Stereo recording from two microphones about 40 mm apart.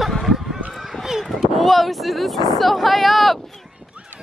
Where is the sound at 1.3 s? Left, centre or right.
Centre.